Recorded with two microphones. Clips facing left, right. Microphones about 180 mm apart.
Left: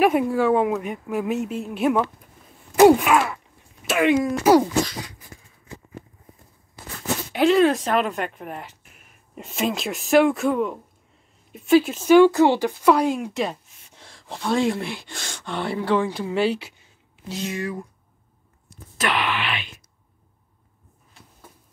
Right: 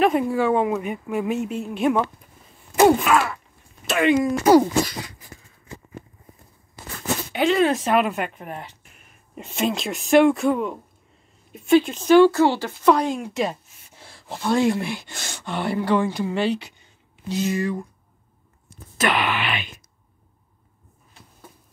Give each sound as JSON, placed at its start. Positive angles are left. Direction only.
{"t": 0.0, "sound": "speech", "side_deg": 5}
{"t": 3.1, "sound": "a sound", "side_deg": 20}
{"t": 3.8, "sound": "speech", "side_deg": 5}
{"t": 7.3, "sound": "speech", "side_deg": 0}
{"t": 18.9, "sound": "speech", "side_deg": -5}